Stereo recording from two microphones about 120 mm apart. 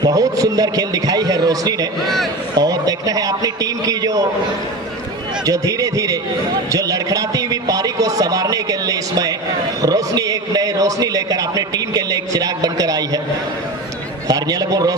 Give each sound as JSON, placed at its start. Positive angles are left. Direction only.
{"t": 0.0, "sound": "a man's voice", "side_deg": -30}
{"t": 5.4, "sound": "a man's voice", "side_deg": -30}
{"t": 14.2, "sound": "a man's voice", "side_deg": -30}